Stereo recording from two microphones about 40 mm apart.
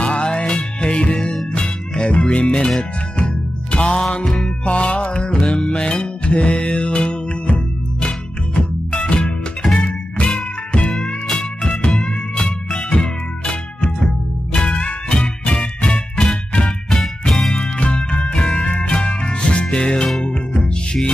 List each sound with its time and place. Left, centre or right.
0.0 s music: left
3.7 s music: left
15.9 s music: centre
17.3 s music: centre
17.6 s music: left